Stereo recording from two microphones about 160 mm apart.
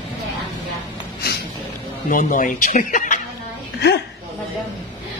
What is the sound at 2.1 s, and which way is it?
Speech, 55° left (ahead or behind).